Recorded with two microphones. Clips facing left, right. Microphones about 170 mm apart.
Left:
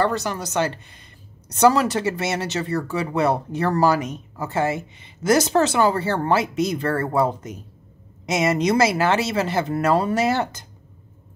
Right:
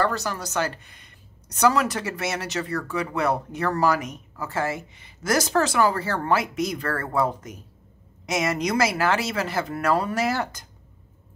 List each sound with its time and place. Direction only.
0.0 s speech: 20° left (ahead or behind)